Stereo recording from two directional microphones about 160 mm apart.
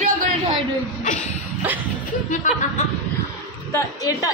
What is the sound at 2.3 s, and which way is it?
Speech, 50° left (ahead or behind).